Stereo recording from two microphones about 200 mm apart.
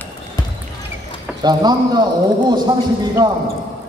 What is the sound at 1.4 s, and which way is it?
A man's voice, 20° right (ahead or behind).